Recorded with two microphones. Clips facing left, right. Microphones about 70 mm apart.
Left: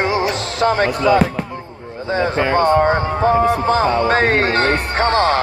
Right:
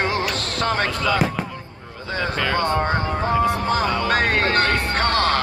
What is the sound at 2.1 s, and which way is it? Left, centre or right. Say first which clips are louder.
Speech: left 6 dB; left.